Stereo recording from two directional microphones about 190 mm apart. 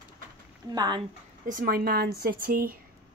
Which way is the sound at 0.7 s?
20° right (ahead or behind).